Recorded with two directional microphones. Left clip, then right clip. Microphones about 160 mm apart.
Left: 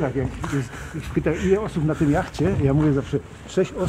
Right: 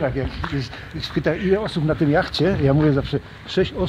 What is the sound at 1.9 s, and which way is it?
Speech, 60° right (ahead or behind).